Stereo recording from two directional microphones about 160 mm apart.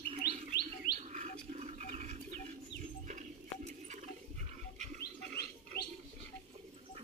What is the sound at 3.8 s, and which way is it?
Rodents, 50° right (ahead or behind).